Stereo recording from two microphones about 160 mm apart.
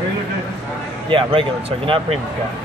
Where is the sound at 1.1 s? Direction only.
35° right (ahead or behind).